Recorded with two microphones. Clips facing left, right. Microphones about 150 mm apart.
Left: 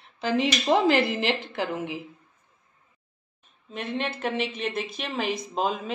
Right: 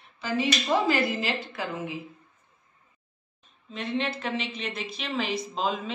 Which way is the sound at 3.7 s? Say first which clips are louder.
Right 1 dB; 50° left (ahead or behind).